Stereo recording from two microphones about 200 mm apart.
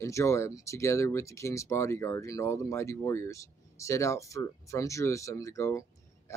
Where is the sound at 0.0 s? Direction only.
15° left (ahead or behind).